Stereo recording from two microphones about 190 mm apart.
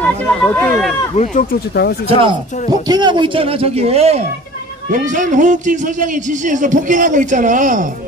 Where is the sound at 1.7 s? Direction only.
60° left (ahead or behind).